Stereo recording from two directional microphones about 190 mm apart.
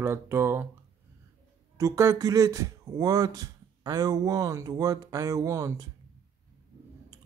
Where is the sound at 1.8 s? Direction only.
15° right (ahead or behind).